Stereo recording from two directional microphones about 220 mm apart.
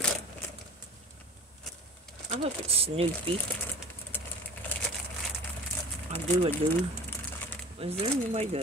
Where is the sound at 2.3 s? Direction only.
25° right (ahead or behind).